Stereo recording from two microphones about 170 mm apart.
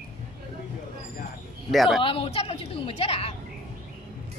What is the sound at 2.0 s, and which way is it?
A woman's voice, 30° left (ahead or behind).